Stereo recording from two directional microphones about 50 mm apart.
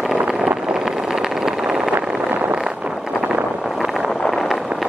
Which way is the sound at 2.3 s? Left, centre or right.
Right.